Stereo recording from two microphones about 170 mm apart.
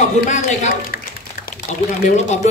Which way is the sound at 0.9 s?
60° left (ahead or behind).